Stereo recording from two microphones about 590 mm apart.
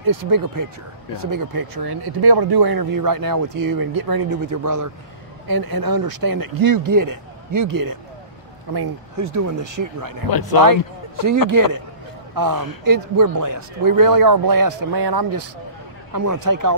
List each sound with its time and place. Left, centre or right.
0.0 s speech: right
10.3 s speech: left
10.6 s a man's voice: right
12.4 s speech: right